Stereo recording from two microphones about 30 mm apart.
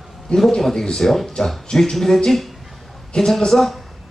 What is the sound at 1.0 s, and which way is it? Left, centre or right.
Speech, centre.